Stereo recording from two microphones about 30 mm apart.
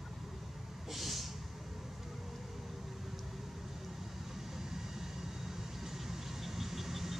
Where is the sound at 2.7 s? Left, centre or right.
Centre.